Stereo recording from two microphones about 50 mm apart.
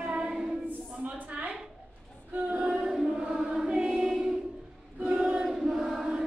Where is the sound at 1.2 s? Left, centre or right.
Right.